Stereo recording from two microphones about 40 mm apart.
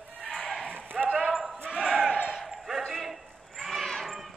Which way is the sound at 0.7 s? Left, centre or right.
Right.